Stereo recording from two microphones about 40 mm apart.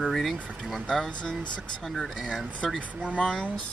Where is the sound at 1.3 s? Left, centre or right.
Left.